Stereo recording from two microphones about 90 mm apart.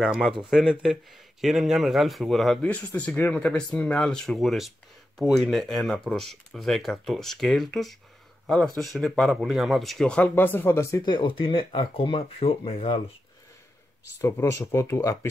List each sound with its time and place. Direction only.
0.0 s speech: 5° right (ahead or behind)
3.0 s speech: 15° left (ahead or behind)
11.0 s speech: 60° left (ahead or behind); by 13.0 s 85° left
14.2 s speech: 40° left (ahead or behind)